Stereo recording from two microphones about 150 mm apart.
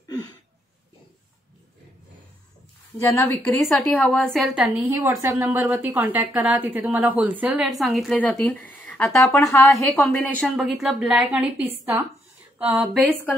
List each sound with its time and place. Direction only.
3.0 s a woman's voice: 20° left (ahead or behind)
3.6 s a woman's voice: 5° left (ahead or behind)
4.9 s a woman's voice: 15° right (ahead or behind)